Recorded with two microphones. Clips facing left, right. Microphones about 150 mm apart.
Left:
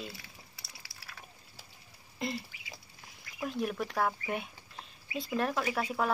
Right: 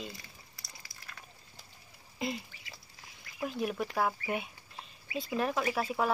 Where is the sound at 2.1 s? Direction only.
5° right (ahead or behind).